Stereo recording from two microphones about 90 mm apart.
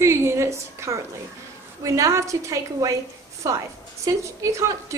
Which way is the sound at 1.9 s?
35° right (ahead or behind).